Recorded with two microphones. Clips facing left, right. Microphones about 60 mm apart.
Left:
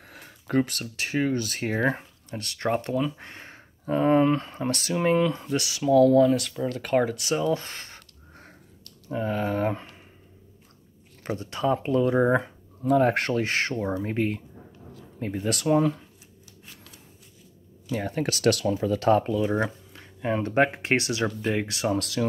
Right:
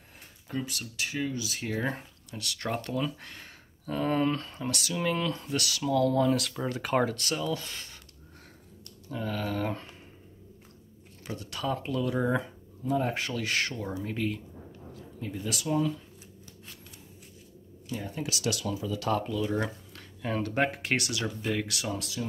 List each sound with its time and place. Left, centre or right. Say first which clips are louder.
0.1 s a sound: left 10 dB; left
0.7 s speech: left 3 dB; left
4.6 s speech: left 6 dB; left; by 6.0 s centre
6.0 s speech: left 7 dB; centre
7.1 s speech: left 5 dB; centre
7.3 s speech: left 7 dB; left
9.1 s speech: left 6 dB; left
11.2 s speech: left 7 dB; left
12.8 s speech: left 8 dB; left
13.3 s speech: left 5 dB; left
17.9 s speech: left 7 dB; left
18.7 s speech: left 6 dB; left
21.9 s speech: left 8 dB; left